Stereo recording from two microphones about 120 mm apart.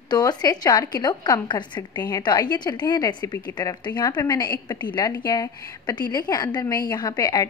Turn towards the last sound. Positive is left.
turn(degrees=35)  # may be behind; listen again after turning